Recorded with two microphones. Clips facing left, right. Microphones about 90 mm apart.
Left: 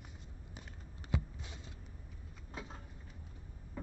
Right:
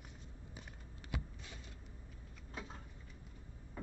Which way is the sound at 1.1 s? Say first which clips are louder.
Left 6 dB; 20° left (ahead or behind).